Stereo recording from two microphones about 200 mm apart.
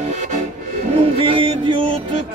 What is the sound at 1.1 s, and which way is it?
Music, 25° right (ahead or behind).